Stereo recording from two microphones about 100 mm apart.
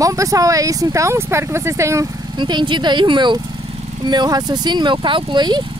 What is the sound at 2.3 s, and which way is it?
Speech, 50° right (ahead or behind).